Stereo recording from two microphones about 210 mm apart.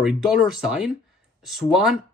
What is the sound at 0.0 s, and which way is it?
Speech, 5° right (ahead or behind).